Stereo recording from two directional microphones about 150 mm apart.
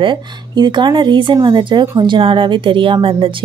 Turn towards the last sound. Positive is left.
turn(degrees=-35)  # may be behind; listen again after turning